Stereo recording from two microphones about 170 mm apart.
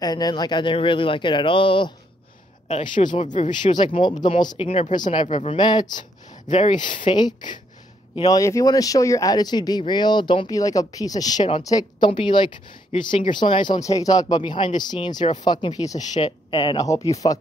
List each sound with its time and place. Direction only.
0.0 s speech: 25° left (ahead or behind)
3.0 s speech: 40° left (ahead or behind)
3.4 s speech: 25° left (ahead or behind)
6.5 s speech: 40° left (ahead or behind)
7.1 s speech: 25° left (ahead or behind)